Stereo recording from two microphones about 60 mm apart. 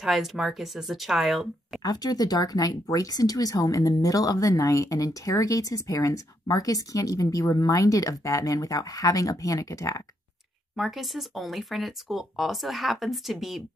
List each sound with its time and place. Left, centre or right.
0.0 s speech: centre
1.8 s speech: left
10.8 s speech: centre